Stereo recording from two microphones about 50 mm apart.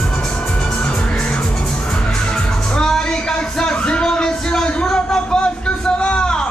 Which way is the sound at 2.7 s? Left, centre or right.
Centre.